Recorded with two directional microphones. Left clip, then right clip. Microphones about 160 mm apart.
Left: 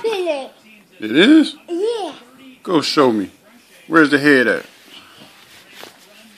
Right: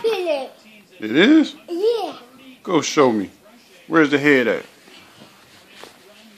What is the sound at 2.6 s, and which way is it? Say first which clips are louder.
A man's voice: left 2 dB; centre (ahead or behind).